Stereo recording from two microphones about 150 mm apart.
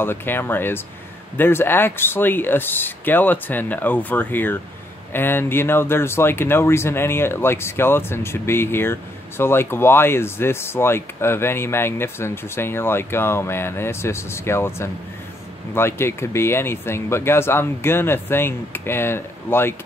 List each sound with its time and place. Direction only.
0.0 s speech: 15° left (ahead or behind)